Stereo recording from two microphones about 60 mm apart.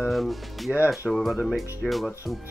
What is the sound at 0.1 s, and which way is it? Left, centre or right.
Speech, centre.